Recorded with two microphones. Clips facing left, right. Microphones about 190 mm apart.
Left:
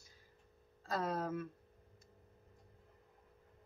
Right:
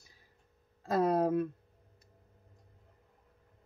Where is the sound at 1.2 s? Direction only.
65° right (ahead or behind).